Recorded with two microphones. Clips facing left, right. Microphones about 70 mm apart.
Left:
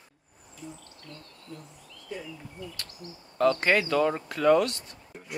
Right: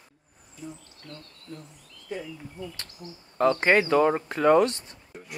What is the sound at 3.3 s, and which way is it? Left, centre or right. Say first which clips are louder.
Speech: right 2 dB; right.